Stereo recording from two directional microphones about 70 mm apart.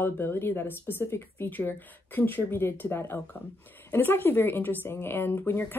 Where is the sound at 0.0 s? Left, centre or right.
Left.